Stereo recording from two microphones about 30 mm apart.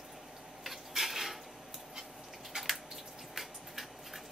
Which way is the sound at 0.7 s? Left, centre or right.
Centre.